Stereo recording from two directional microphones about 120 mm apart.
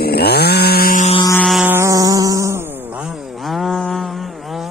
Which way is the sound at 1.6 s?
20° right (ahead or behind).